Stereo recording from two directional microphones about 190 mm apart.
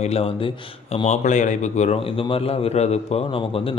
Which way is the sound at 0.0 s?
30° left (ahead or behind).